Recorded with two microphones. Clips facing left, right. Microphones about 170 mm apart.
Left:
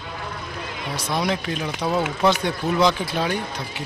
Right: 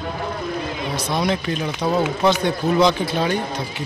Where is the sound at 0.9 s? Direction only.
10° left (ahead or behind).